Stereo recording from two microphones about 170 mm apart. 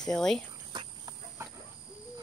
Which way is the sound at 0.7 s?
25° right (ahead or behind).